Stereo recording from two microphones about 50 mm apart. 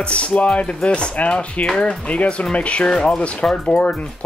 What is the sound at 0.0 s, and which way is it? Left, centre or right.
Speech, left.